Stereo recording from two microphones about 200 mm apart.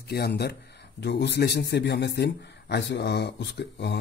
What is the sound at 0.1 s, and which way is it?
A man's voice, 55° left (ahead or behind).